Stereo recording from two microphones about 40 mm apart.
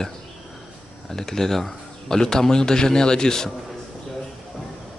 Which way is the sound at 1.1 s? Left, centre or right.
Centre.